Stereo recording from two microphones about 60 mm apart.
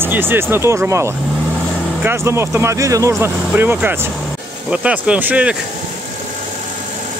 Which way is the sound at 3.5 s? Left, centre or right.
Right.